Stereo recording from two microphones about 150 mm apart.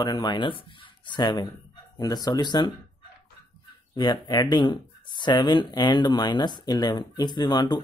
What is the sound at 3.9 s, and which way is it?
Speech, 25° left (ahead or behind).